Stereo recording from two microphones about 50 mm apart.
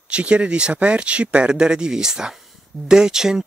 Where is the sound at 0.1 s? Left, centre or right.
Right.